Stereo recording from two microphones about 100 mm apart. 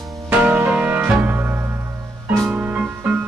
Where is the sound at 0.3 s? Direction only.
15° right (ahead or behind).